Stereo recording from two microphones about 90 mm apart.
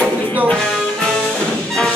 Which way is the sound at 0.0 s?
20° left (ahead or behind).